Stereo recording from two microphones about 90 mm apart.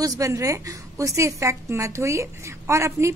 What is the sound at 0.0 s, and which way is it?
A woman's voice, 40° right (ahead or behind).